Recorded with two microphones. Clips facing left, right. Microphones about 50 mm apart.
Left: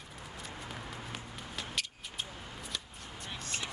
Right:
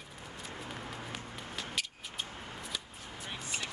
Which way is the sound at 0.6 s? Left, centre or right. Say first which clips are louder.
Right 2 dB; centre.